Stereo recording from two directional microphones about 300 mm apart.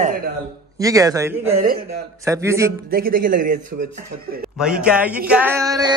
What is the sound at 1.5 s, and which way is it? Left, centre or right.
Speech, right.